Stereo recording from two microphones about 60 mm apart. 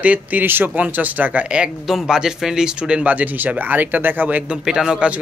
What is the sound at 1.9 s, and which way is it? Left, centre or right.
Speech, centre.